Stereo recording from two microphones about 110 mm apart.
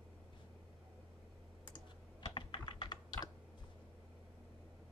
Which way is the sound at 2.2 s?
45° left (ahead or behind).